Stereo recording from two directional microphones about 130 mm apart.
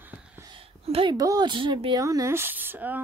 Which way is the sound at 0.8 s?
45° right (ahead or behind).